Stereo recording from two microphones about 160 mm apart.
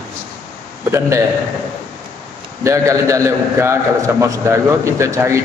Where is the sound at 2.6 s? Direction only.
20° right (ahead or behind).